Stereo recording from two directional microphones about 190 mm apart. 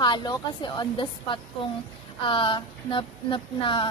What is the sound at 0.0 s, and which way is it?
A woman's voice, 25° left (ahead or behind).